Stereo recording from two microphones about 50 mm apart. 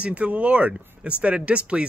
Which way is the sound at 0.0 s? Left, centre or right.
Right.